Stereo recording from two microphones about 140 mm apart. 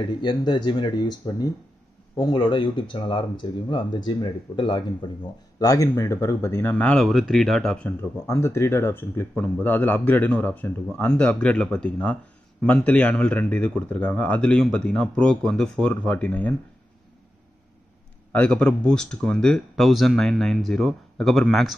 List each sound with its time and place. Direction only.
0.0 s speech: 30° left (ahead or behind)
5.6 s speech: 25° left (ahead or behind); by 7.9 s 5° left (ahead or behind)
8.3 s speech: 20° left (ahead or behind)
18.3 s speech: 10° left (ahead or behind)